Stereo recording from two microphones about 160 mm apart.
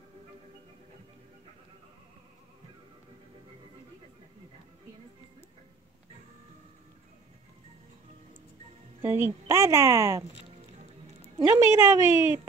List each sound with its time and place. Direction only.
9.0 s a woman's voice: 15° right (ahead or behind)
11.4 s a woman's voice: 15° right (ahead or behind)